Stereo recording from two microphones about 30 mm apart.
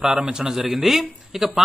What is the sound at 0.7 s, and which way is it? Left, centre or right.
Speech, centre.